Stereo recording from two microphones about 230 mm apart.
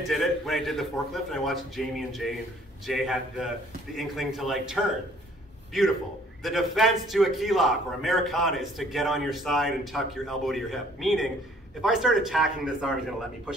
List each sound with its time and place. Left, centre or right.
0.1 s a man's voice: centre